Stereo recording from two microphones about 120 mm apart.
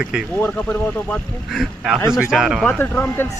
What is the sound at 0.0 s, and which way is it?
Speech, 5° right (ahead or behind).